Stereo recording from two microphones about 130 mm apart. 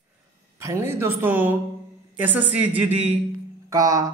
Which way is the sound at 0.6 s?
20° right (ahead or behind).